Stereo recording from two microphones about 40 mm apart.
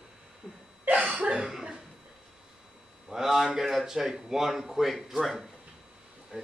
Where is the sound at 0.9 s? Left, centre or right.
Right.